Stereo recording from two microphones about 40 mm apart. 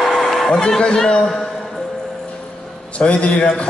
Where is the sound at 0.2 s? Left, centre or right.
Centre.